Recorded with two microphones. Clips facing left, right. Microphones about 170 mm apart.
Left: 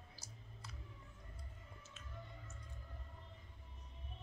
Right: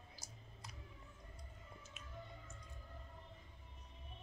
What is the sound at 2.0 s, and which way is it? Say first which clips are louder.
Music: right 1 dB; 15° right (ahead or behind).